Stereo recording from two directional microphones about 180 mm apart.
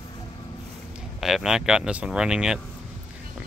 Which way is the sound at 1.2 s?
Centre (ahead or behind).